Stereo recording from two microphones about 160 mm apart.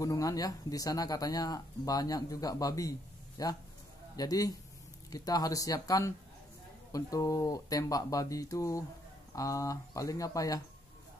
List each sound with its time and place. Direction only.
0.0 s speech: 20° left (ahead or behind)